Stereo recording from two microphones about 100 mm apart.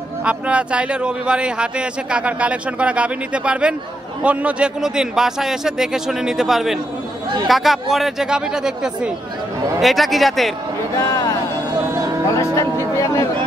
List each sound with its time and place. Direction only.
0.2 s a man's voice: 10° right (ahead or behind)
11.0 s speech: 35° left (ahead or behind)
12.4 s speech: 30° left (ahead or behind)